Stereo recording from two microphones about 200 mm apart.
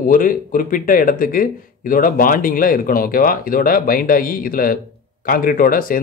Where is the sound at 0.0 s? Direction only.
45° left (ahead or behind).